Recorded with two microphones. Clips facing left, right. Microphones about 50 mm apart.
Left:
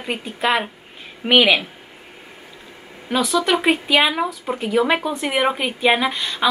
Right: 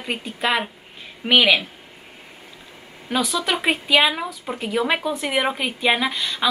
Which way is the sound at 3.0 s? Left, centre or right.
Centre.